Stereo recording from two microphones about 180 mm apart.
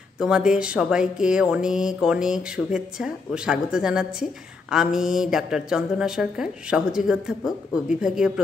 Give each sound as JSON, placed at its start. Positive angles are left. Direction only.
{"t": 0.2, "sound": "speech", "side_deg": -5}